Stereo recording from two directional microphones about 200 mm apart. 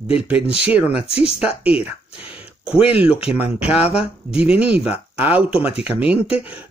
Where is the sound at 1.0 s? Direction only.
30° left (ahead or behind).